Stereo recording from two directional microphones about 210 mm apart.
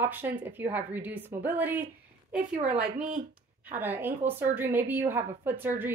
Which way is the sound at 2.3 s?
40° right (ahead or behind).